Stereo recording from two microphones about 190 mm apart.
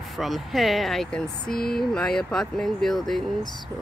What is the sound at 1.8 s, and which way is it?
Speech, centre (ahead or behind).